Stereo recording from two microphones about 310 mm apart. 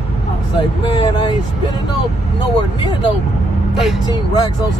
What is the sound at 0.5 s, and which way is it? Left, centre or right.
Vehicle, centre.